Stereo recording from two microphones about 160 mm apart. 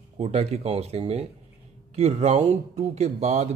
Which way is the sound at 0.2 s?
45° right (ahead or behind).